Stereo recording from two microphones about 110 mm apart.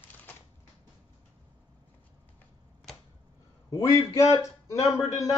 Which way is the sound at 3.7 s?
35° left (ahead or behind).